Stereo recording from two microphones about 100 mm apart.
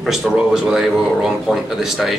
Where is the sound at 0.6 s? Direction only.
5° right (ahead or behind).